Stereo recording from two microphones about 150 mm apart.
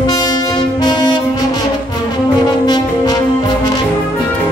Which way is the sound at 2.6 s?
25° left (ahead or behind).